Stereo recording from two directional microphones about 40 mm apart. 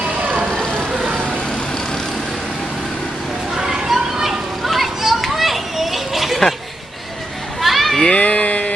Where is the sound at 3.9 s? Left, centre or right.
Centre.